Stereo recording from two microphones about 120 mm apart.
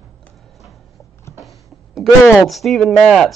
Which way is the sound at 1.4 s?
Centre (ahead or behind).